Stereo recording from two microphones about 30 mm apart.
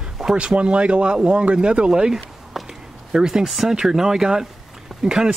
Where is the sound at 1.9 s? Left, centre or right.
Right.